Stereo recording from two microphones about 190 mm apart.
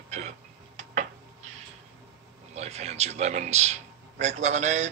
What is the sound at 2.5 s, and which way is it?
A man's voice, 35° right (ahead or behind).